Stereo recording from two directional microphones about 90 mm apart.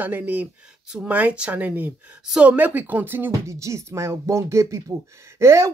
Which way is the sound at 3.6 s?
35° right (ahead or behind).